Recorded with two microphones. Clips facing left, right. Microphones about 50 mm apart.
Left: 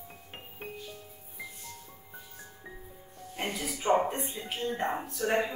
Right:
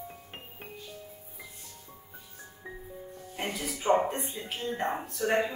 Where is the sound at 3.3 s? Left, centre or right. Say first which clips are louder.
Even; centre.